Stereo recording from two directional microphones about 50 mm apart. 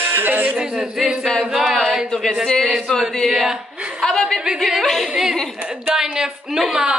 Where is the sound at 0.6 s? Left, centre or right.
Centre.